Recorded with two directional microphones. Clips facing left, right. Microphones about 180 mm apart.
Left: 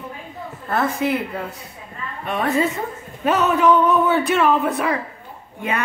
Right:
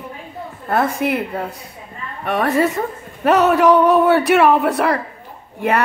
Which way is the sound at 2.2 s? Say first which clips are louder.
Right 3 dB; 65° right (ahead or behind).